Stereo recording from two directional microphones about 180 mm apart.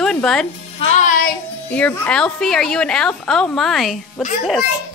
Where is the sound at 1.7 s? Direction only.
5° left (ahead or behind).